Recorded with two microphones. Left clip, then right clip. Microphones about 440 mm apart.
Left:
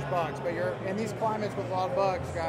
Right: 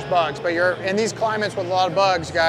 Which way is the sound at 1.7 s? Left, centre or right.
Right.